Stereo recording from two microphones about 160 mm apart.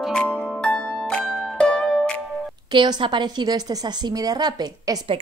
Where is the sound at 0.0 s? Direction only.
5° left (ahead or behind).